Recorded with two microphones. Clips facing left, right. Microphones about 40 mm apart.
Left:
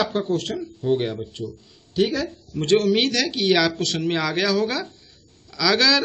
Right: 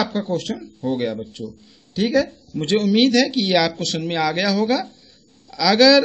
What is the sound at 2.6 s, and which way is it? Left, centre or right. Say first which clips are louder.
Speech: left 1 dB; right.